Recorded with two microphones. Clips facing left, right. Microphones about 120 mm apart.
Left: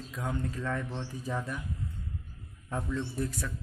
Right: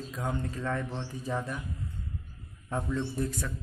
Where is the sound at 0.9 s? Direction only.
10° right (ahead or behind).